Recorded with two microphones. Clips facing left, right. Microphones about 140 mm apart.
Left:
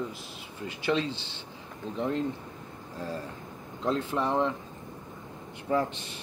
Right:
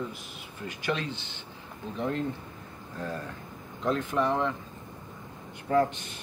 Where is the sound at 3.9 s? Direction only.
30° left (ahead or behind).